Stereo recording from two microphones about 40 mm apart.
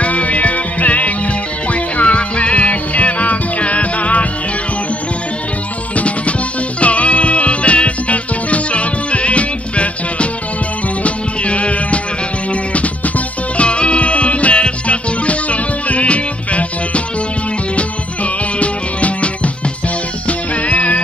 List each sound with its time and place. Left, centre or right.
0.0 s music: left
5.9 s music: left